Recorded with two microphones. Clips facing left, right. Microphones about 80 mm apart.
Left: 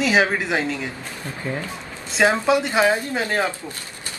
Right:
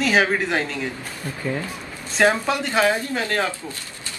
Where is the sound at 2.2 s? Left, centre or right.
Centre.